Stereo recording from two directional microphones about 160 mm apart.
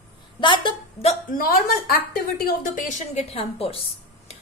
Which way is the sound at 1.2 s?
65° left (ahead or behind).